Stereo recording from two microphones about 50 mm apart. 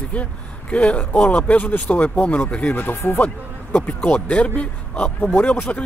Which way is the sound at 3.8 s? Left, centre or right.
Centre.